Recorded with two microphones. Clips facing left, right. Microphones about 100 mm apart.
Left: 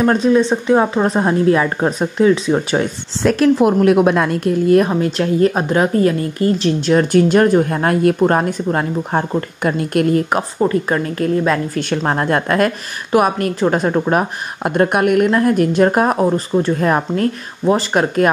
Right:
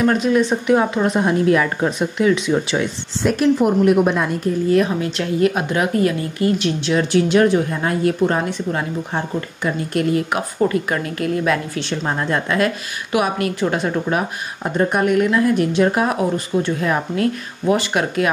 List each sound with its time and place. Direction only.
0.0 s speech: 35° left (ahead or behind)
3.2 s a woman's voice: 90° left
4.6 s speech: 45° left (ahead or behind)
10.3 s speech: 35° left (ahead or behind)
11.8 s speech: 55° left (ahead or behind); by 14.2 s 35° left (ahead or behind)
14.6 s speech: 65° left (ahead or behind)
15.3 s speech: 45° left (ahead or behind)